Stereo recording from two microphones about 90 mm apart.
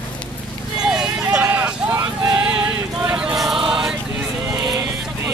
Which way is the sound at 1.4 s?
20° right (ahead or behind).